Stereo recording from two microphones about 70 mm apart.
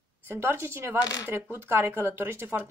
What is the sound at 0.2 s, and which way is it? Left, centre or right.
Speech, right.